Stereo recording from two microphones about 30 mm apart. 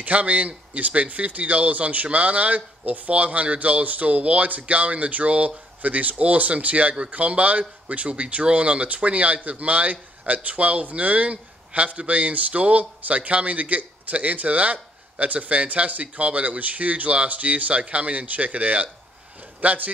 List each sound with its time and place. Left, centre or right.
0.0 s speech: right